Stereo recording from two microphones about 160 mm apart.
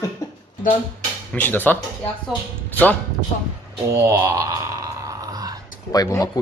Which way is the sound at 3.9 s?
20° right (ahead or behind).